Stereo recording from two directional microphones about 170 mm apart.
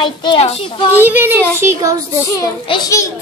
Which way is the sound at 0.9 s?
10° right (ahead or behind).